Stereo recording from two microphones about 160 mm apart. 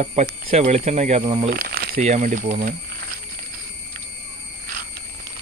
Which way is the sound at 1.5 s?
70° right (ahead or behind).